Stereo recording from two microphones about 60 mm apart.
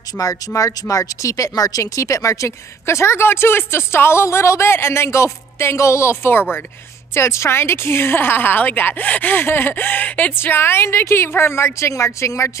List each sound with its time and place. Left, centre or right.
0.1 s speech: left
7.2 s a woman's voice: left
10.3 s speech: left